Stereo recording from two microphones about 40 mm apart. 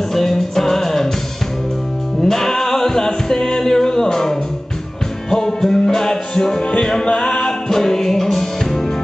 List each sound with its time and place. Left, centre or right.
0.1 s music: centre
2.2 s music: centre
6.6 s music: left